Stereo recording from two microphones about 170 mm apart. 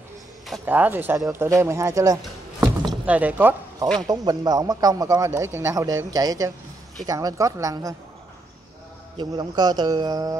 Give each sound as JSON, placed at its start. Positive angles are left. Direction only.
{"t": 0.7, "sound": "speech", "side_deg": -10}
{"t": 4.1, "sound": "a man's voice", "side_deg": -20}
{"t": 9.1, "sound": "a man's voice", "side_deg": -25}